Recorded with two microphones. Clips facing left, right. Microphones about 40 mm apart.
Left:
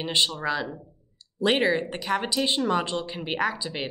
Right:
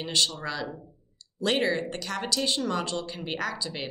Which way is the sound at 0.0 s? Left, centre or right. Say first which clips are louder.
Left 3 dB; left.